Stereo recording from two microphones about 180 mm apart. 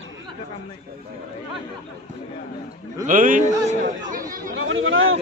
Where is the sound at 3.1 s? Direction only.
45° right (ahead or behind).